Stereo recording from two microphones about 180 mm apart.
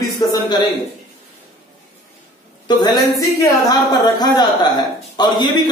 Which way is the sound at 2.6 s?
25° left (ahead or behind).